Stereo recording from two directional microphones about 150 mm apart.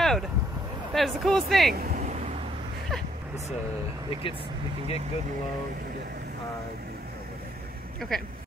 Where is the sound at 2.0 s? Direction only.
50° right (ahead or behind).